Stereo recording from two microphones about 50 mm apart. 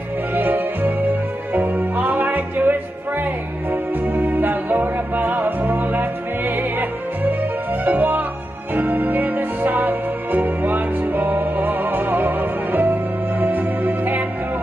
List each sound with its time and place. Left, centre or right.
0.3 s music: right